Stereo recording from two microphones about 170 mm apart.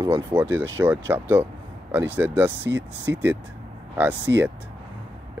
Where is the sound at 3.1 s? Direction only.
10° right (ahead or behind).